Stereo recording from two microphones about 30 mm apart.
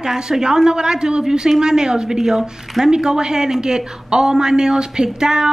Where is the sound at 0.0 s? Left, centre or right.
Right.